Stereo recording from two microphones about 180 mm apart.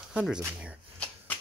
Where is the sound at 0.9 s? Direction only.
10° left (ahead or behind).